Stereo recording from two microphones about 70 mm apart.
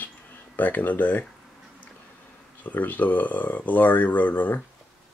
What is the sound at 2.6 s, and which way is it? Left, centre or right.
Speech, left.